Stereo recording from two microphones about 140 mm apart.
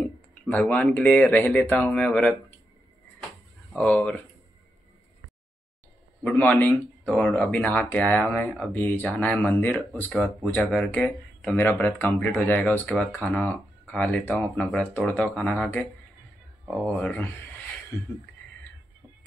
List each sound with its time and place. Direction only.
0.0 s speech: 10° left (ahead or behind)
3.7 s speech: 5° left (ahead or behind)
6.2 s speech: 15° left (ahead or behind)